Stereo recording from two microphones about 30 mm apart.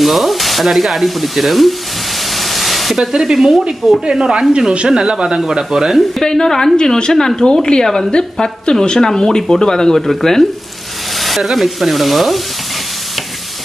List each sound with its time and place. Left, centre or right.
0.0 s frying: centre
3.0 s speech: centre
3.8 s speech: centre
4.2 s speech: right
6.2 s a woman's voice: centre
11.1 s sizzle: centre